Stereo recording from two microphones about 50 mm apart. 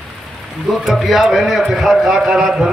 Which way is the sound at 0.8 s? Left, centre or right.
Centre.